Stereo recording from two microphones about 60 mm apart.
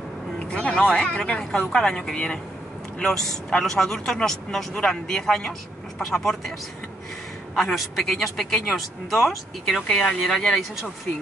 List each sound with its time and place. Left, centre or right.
0.4 s a man's voice: centre
7.5 s a man's voice: centre